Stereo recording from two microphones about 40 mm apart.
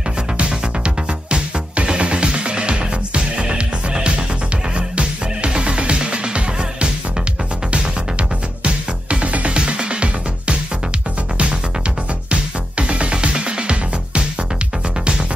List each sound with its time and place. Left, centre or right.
0.5 s music: right
12.3 s music: right